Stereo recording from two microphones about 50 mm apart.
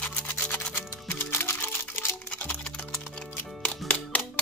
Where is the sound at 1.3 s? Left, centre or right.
Left.